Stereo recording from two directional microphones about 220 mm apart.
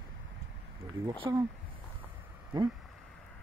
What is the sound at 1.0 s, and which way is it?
Speech, 25° right (ahead or behind).